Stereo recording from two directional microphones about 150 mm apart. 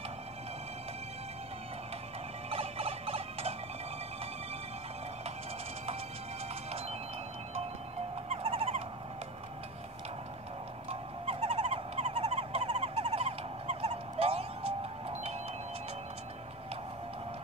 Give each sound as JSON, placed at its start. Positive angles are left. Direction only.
{"t": 2.5, "sound": "turkey", "side_deg": -40}
{"t": 8.3, "sound": "music", "side_deg": -40}
{"t": 10.9, "sound": "frog", "side_deg": -45}